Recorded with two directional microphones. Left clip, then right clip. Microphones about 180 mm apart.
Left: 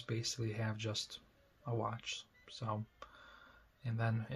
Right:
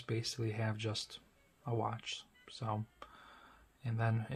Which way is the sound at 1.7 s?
20° right (ahead or behind).